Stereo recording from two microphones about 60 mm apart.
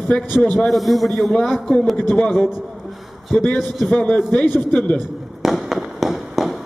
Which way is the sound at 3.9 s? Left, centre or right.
Left.